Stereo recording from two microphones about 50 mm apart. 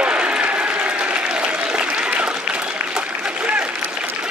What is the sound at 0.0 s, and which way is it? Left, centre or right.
Applause, centre.